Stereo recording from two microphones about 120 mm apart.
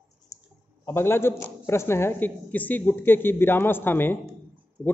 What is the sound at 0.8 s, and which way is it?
A man's voice, 20° left (ahead or behind).